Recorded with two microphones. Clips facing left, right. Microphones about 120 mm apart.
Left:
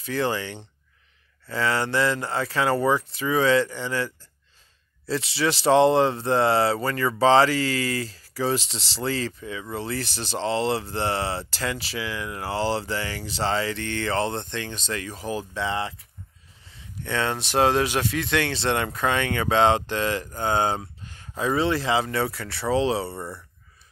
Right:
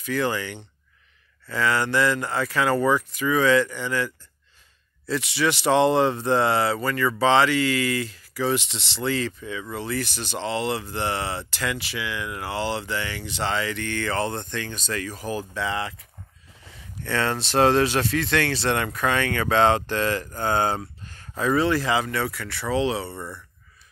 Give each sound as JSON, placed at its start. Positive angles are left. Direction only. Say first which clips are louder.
{"t": 0.0, "sound": "a man's voice", "louder": "even", "side_deg": 30}